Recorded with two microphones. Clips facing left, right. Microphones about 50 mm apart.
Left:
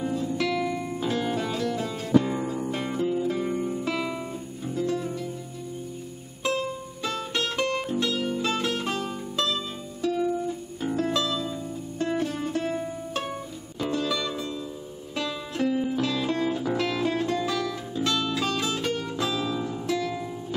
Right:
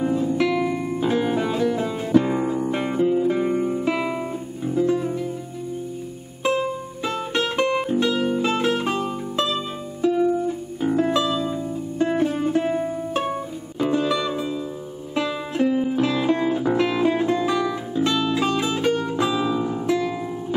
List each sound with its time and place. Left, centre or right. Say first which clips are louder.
0.0 s music: right 6 dB; right
6.4 s music: right 5 dB; centre